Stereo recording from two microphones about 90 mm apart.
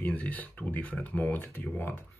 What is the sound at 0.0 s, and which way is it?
Speech, 15° left (ahead or behind).